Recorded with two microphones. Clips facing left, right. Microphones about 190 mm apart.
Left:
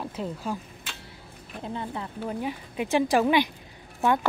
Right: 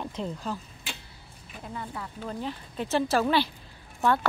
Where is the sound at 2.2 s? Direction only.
10° left (ahead or behind).